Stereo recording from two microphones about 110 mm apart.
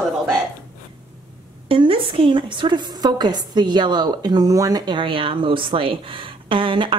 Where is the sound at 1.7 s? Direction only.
55° right (ahead or behind).